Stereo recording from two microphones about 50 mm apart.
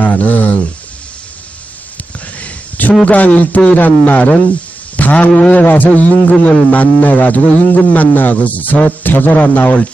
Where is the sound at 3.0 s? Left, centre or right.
Left.